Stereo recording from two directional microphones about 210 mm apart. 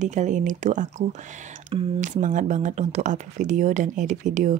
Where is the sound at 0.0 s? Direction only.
35° right (ahead or behind).